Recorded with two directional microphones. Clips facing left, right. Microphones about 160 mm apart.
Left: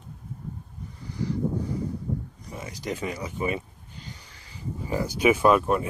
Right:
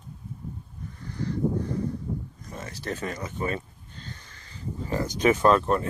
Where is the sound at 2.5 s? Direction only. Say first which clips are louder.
Left 1 dB; 10° left (ahead or behind).